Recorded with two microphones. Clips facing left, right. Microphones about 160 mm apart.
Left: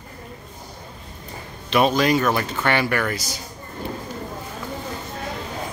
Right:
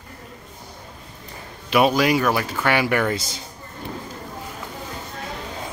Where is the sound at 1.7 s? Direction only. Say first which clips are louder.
Even; 10° right (ahead or behind).